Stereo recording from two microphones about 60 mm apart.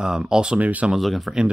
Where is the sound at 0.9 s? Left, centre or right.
Centre.